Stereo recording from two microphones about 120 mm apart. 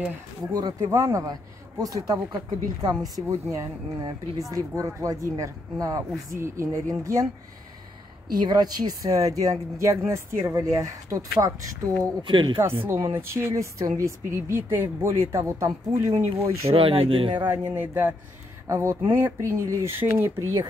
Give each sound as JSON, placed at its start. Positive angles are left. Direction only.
{"t": 0.5, "sound": "speech", "side_deg": -30}
{"t": 8.4, "sound": "speech", "side_deg": -35}
{"t": 12.2, "sound": "speech", "side_deg": -45}
{"t": 12.8, "sound": "speech", "side_deg": -20}
{"t": 16.6, "sound": "speech", "side_deg": -50}
{"t": 17.5, "sound": "speech", "side_deg": -15}